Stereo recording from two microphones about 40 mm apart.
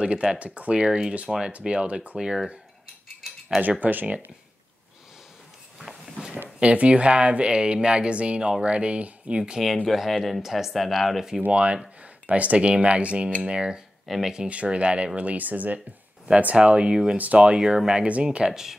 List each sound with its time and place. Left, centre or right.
0.0 s speech: right
2.1 s speech: centre
3.8 s speech: right
5.8 s a sound: centre
6.6 s speech: right
9.8 s speech: centre
11.5 s speech: right
14.0 s speech: centre
14.5 s speech: right
16.9 s speech: centre
17.2 s speech: right
18.0 s speech: right; by 18.8 s centre